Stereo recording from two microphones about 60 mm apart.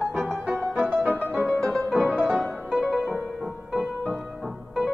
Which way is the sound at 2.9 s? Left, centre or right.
Centre.